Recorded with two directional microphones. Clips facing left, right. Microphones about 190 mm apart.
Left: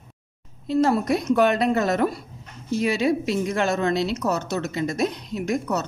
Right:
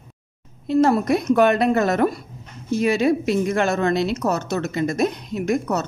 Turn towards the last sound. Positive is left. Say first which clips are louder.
# right 3 dB
turn(degrees=-50)  # may be behind; listen again after turning